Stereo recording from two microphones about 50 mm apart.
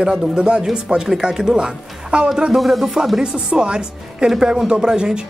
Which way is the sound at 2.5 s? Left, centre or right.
Centre.